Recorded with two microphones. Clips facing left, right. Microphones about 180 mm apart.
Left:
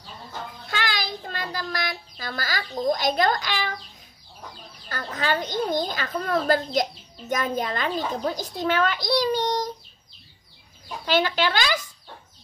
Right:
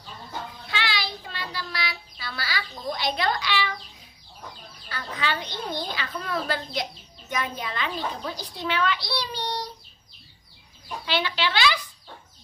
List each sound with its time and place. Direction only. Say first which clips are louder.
0.7 s a sound: left 2 dB; 45° left (ahead or behind)
4.8 s a child's voice: left 3 dB; 45° left (ahead or behind)
11.1 s a child's voice: left 5 dB; 45° left (ahead or behind)